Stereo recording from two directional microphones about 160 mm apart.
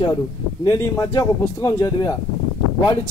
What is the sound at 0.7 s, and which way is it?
A man's voice, 20° left (ahead or behind).